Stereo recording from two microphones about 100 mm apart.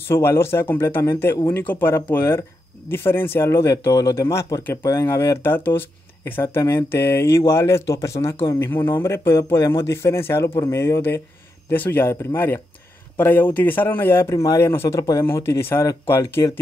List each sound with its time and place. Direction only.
0.1 s speech: 25° left (ahead or behind)
13.2 s speech: 20° left (ahead or behind)